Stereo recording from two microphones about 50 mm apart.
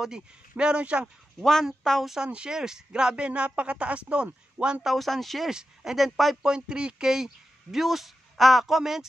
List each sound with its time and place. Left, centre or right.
0.0 s speech: centre
1.4 s speech: centre
2.2 s speech: centre
4.8 s speech: centre
5.5 s speech: centre
6.4 s speech: centre